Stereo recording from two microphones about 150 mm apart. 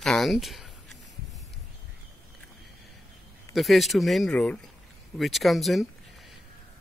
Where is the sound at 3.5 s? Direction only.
Centre (ahead or behind).